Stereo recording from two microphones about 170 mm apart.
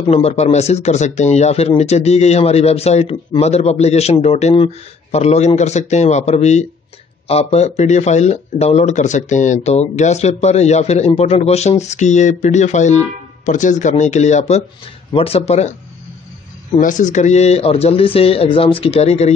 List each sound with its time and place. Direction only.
0.1 s speech: 40° left (ahead or behind)
16.8 s speech: 45° left (ahead or behind)